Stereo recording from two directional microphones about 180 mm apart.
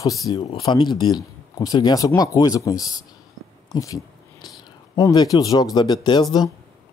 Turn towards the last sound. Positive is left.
turn(degrees=25)  # may be behind; listen again after turning